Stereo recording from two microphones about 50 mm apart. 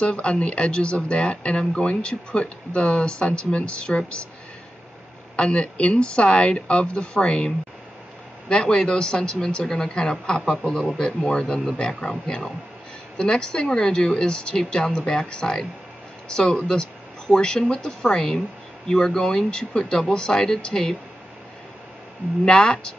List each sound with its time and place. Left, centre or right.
0.0 s speech: left
5.3 s speech: left
22.4 s speech: centre